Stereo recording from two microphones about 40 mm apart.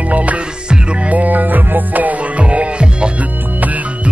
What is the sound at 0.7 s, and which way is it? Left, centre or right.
Music, right.